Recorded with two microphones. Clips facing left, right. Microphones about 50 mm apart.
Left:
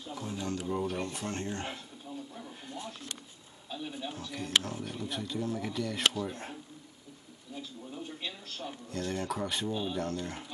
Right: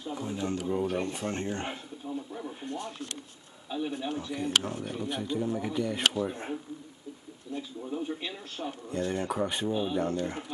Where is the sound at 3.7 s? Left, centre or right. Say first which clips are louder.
Right 7 dB; centre.